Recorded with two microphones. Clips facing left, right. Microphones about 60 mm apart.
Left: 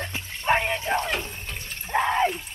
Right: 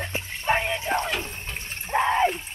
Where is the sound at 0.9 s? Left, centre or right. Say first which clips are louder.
Even; centre.